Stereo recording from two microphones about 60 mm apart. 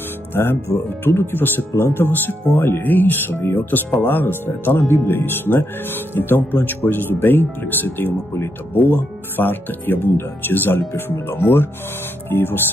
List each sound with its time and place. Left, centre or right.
0.3 s speech: left